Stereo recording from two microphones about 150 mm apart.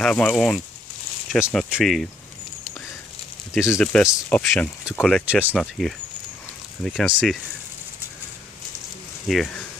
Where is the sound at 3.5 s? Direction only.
5° right (ahead or behind).